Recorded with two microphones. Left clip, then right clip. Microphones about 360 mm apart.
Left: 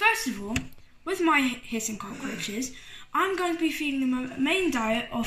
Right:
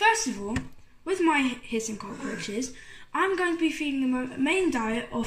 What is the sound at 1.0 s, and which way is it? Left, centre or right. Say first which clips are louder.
Speech: left 1 dB; centre.